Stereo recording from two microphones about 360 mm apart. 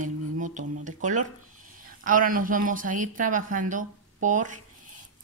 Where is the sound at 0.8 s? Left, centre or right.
Right.